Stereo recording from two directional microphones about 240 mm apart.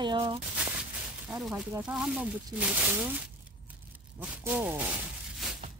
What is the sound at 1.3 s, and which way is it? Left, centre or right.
Speech, centre.